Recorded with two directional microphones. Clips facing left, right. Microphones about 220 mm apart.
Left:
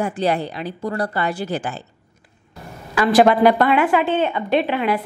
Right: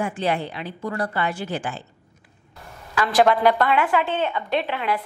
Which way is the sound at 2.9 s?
10° left (ahead or behind).